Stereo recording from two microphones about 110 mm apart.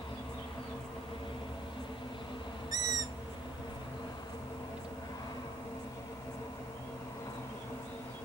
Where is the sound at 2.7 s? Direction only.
35° right (ahead or behind).